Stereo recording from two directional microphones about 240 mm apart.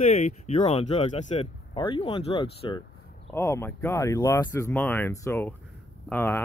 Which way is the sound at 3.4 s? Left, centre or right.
Centre.